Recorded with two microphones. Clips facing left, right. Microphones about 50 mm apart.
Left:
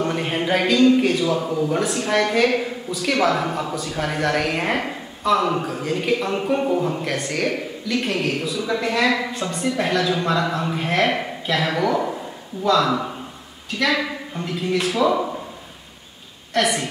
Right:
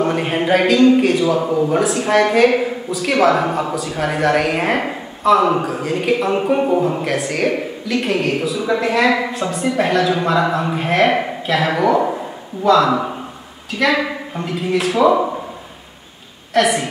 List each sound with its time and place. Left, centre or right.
0.0 s speech: centre
1.5 s speech: centre
1.8 s a woman's voice: centre
12.0 s a sound: centre
12.6 s a woman's voice: centre
16.5 s a woman's voice: centre